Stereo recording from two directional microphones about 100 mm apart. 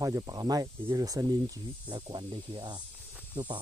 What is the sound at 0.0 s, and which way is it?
Speech, 35° right (ahead or behind).